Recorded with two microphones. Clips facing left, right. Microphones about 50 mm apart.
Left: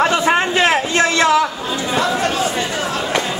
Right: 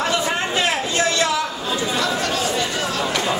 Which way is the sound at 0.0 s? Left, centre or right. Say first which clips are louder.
Left 6 dB; left.